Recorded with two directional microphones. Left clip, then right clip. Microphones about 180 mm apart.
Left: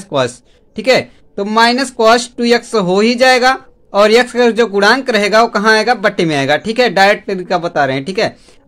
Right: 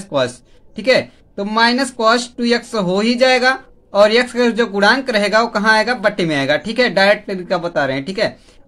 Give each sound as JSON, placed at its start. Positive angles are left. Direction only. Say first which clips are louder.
{"t": 0.0, "sound": "a man's voice", "louder": "left 3 dB", "side_deg": 35}